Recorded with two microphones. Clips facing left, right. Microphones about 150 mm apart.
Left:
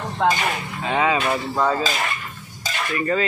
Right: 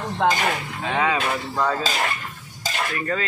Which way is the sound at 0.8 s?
5° left (ahead or behind).